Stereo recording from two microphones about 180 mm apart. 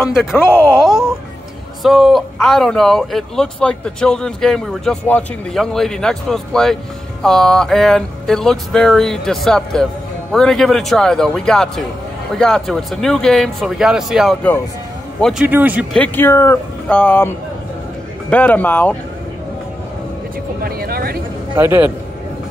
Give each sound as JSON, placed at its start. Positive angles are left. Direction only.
{"t": 0.5, "sound": "speech", "side_deg": 10}
{"t": 0.7, "sound": "a man's voice", "side_deg": -5}
{"t": 15.4, "sound": "a man's voice", "side_deg": -10}
{"t": 15.9, "sound": "speech", "side_deg": 10}
{"t": 18.3, "sound": "speech", "side_deg": 10}
{"t": 20.6, "sound": "speech", "side_deg": -55}
{"t": 21.5, "sound": "a man's voice", "side_deg": -10}